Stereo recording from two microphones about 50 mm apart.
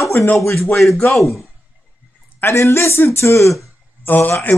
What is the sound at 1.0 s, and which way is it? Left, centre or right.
Speech, centre.